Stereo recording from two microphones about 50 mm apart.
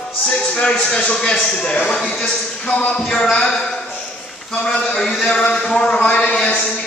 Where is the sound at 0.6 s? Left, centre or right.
Centre.